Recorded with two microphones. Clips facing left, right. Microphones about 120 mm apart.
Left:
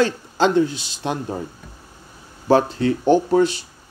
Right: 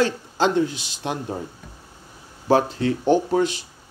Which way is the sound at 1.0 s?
15° left (ahead or behind).